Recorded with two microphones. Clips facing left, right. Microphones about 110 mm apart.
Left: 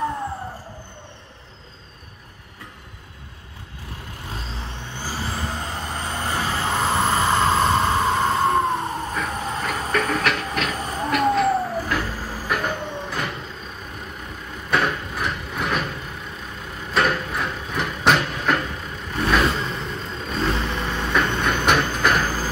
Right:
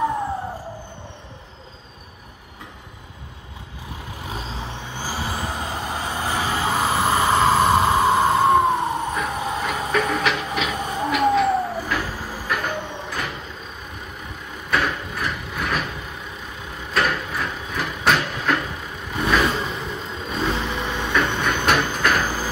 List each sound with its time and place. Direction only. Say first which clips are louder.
4.9 s vehicle: right 1 dB; 15° right (ahead or behind)
14.7 s gears: left 1 dB; centre (ahead or behind)
16.7 s vehicle: left 1 dB; centre (ahead or behind)